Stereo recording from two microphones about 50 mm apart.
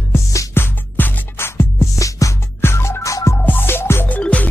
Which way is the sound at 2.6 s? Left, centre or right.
Left.